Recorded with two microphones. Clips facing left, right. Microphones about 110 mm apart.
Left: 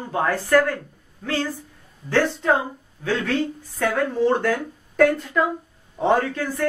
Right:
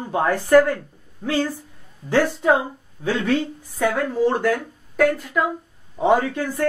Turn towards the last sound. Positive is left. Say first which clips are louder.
# right 2 dB
turn(degrees=-15)  # may be behind; listen again after turning